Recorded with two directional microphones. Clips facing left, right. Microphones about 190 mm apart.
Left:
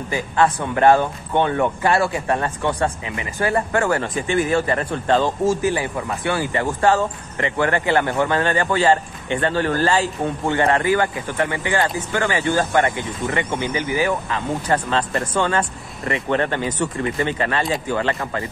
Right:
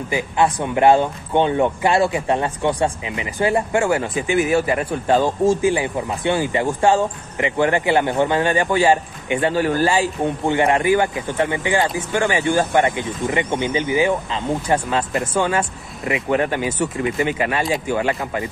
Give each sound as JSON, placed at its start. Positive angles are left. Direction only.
{"t": 0.1, "sound": "speech", "side_deg": -15}